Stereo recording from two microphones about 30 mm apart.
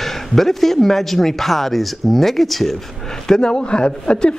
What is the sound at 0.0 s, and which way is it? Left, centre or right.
Speech, centre.